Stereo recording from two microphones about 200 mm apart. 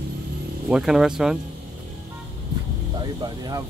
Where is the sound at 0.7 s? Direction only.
Centre (ahead or behind).